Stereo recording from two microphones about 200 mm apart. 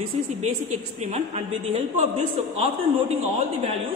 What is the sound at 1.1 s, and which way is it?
Speech, 30° right (ahead or behind).